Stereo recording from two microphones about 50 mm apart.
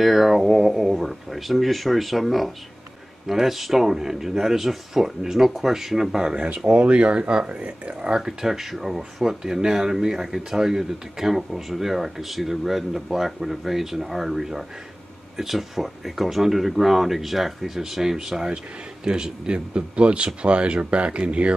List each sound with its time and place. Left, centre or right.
0.0 s speech: centre; by 8.2 s right
8.2 s speech: centre; by 21.5 s right